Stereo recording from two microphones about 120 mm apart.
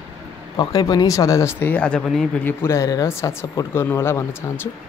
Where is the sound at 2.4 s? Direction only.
20° left (ahead or behind).